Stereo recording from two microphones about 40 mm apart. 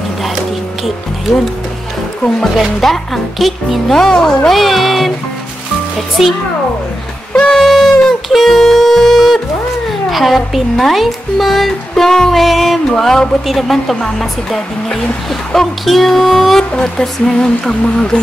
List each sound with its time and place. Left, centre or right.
2.8 s speech: centre
3.9 s speech: centre
4.5 s speech: centre
6.2 s speech: centre
7.3 s a sound: centre
7.6 s music: centre
10.1 s speech: centre
11.9 s speech: centre
12.4 s speech: centre
12.9 s speech: centre
16.7 s a sound: left